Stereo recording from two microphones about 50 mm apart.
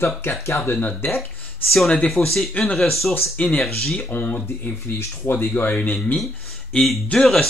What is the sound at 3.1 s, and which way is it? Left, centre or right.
Speech, left.